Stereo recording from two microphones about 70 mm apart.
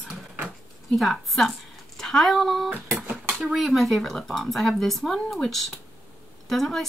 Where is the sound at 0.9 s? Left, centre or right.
Centre.